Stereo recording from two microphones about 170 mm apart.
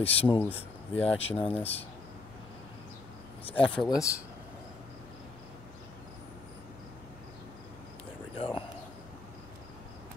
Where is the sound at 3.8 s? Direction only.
25° left (ahead or behind).